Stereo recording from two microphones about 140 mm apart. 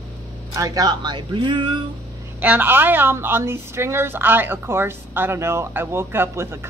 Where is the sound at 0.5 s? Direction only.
25° right (ahead or behind).